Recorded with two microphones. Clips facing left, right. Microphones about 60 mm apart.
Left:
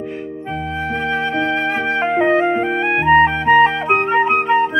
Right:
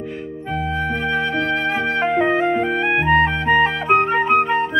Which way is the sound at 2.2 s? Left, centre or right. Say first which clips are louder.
Left 2 dB; left.